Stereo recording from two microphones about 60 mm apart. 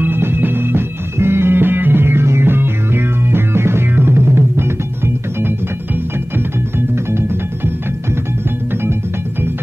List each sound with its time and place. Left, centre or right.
0.0 s music: right
7.1 s music: right